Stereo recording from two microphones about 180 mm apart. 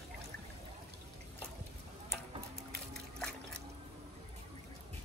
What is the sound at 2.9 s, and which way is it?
Water, 5° left (ahead or behind).